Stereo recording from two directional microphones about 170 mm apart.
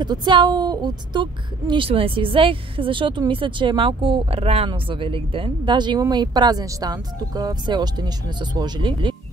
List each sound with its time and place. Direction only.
0.0 s a woman's voice: 25° right (ahead or behind)